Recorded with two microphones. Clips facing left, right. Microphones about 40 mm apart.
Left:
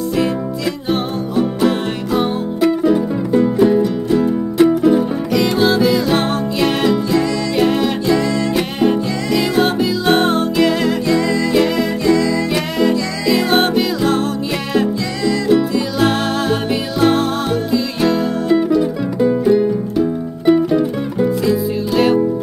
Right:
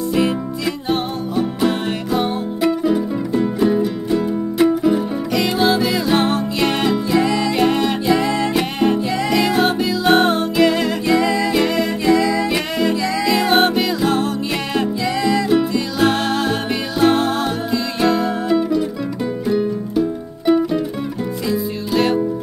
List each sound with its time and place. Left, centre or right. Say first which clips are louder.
0.8 s music: left 2 dB; centre
7.1 s music: even; centre
7.5 s music: left 1 dB; centre
11.1 s music: right 2 dB; centre
11.5 s music: left 2 dB; centre
15.4 s music: left 2 dB; centre
20.4 s music: left 3 dB; centre